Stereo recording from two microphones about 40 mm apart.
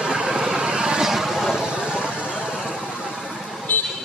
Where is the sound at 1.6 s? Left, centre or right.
Centre.